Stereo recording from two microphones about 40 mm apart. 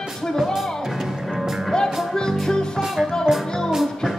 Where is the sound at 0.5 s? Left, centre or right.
Centre.